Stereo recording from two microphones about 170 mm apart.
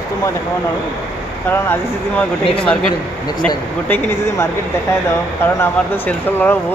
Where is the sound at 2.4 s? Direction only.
30° left (ahead or behind).